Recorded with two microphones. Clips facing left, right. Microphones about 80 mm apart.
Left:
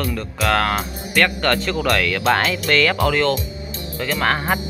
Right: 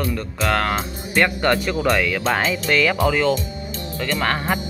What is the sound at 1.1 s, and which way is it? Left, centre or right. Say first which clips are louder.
Speech: even; centre.